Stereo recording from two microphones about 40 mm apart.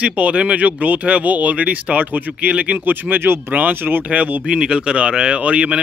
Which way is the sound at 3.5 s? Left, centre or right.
Right.